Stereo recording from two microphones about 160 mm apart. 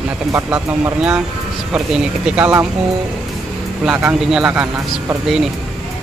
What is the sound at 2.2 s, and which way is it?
Speech, 10° right (ahead or behind).